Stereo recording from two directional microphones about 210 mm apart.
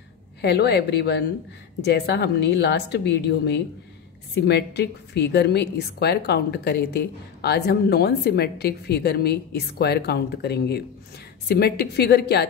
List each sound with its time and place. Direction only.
0.4 s a woman's voice: 55° left (ahead or behind)